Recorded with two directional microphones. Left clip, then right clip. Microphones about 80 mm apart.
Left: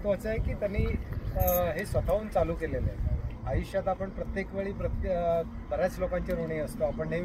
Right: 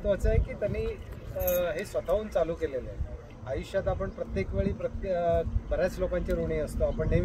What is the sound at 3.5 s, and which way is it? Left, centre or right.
Speech, centre.